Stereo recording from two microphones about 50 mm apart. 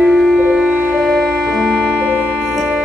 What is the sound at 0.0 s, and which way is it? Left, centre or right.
Music, centre.